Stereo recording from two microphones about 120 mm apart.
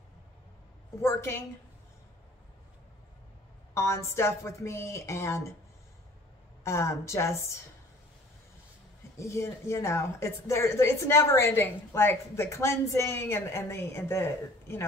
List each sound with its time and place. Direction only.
1.0 s a woman's voice: 20° left (ahead or behind)
3.7 s a woman's voice: 25° left (ahead or behind)
6.6 s a woman's voice: 25° left (ahead or behind)
9.2 s a woman's voice: 25° left (ahead or behind)